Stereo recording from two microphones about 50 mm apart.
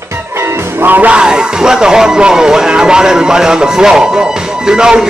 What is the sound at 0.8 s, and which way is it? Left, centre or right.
Music, right.